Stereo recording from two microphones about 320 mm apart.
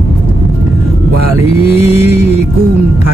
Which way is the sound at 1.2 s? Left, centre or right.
Centre.